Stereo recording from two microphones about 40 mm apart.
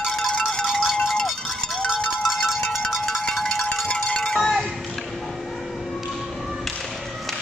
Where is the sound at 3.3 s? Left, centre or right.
Centre.